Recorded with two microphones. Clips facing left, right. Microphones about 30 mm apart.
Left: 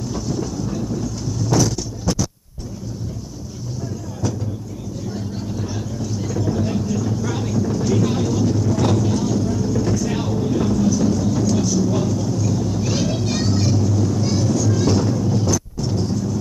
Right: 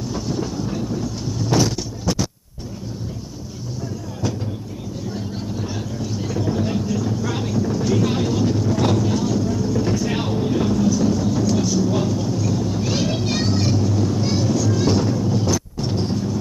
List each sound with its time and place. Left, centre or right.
0.1 s vehicle: right
2.1 s a sound: centre
5.1 s vehicle: centre
9.8 s music: right
10.6 s vehicle: centre; by 16.3 s right